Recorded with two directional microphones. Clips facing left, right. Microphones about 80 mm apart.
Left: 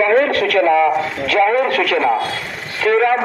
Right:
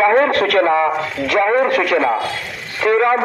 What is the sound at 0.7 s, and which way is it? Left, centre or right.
A man's voice, right.